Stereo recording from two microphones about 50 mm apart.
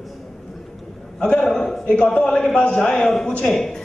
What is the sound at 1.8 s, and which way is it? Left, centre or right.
Speech, left.